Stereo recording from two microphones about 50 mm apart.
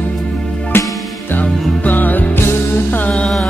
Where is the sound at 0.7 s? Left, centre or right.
Left.